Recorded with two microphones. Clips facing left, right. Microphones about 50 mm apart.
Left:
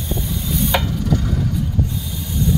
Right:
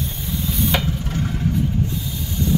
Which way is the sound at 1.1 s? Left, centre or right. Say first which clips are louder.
Left 4 dB; right.